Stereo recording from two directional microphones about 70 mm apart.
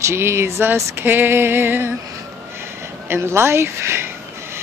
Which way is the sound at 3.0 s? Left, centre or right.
Right.